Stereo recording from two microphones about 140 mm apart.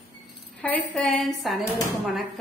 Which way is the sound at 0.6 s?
10° left (ahead or behind).